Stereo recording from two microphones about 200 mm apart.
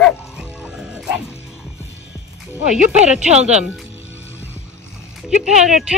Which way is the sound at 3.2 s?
35° right (ahead or behind).